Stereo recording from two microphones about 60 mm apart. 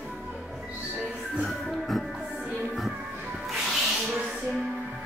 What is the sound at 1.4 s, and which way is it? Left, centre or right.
Music, centre.